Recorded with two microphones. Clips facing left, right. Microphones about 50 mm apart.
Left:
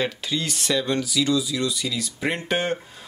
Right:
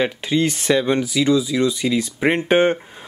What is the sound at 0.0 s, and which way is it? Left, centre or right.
Speech, right.